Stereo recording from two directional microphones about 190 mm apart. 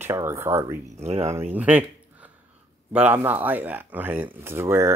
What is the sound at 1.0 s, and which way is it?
Speech, 35° right (ahead or behind).